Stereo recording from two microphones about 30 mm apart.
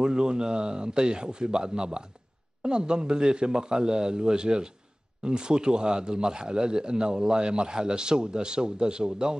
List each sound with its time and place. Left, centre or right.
0.0 s speech: right